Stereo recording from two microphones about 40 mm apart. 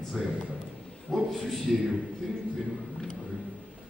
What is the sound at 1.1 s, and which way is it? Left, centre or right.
Speech, centre.